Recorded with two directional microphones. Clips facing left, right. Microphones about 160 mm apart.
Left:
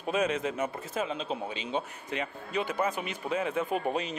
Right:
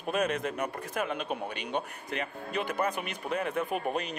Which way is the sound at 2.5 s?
55° right (ahead or behind).